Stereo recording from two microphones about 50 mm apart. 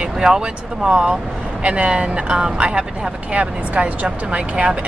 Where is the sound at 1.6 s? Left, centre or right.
Right.